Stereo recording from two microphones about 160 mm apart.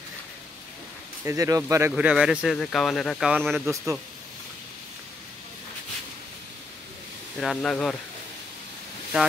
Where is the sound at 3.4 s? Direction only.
15° right (ahead or behind).